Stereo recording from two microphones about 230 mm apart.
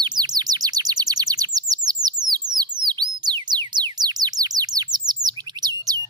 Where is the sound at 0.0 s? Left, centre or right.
Centre.